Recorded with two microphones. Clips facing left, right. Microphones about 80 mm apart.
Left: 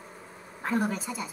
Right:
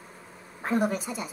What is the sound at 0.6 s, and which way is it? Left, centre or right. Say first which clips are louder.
Speech: right 2 dB; centre.